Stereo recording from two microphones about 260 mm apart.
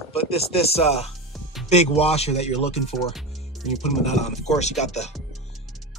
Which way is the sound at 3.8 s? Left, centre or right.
Left.